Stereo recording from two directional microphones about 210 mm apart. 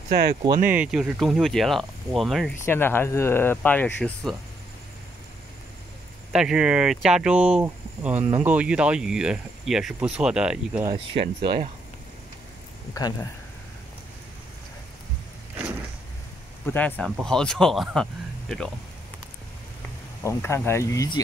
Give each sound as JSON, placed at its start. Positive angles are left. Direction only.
{"t": 0.1, "sound": "speech", "side_deg": -50}
{"t": 0.7, "sound": "speech", "side_deg": -5}
{"t": 2.6, "sound": "speech", "side_deg": 10}
{"t": 6.3, "sound": "speech", "side_deg": -5}
{"t": 11.1, "sound": "speech", "side_deg": -25}
{"t": 12.9, "sound": "speech", "side_deg": 15}
{"t": 16.6, "sound": "speech", "side_deg": 10}
{"t": 20.2, "sound": "speech", "side_deg": 10}